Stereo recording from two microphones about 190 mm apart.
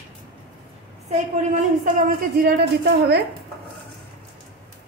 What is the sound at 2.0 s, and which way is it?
Speech, 55° right (ahead or behind).